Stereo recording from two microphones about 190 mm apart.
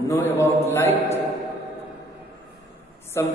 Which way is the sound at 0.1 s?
15° left (ahead or behind).